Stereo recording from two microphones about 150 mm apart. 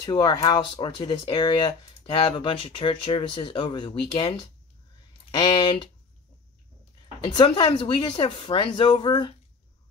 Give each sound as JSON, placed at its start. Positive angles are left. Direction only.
{"t": 0.0, "sound": "speech", "side_deg": 30}
{"t": 7.2, "sound": "speech", "side_deg": 30}